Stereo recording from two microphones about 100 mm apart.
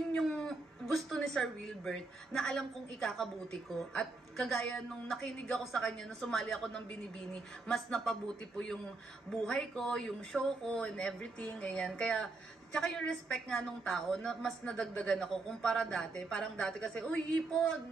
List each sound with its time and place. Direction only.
0.1 s a woman's voice: 5° left (ahead or behind)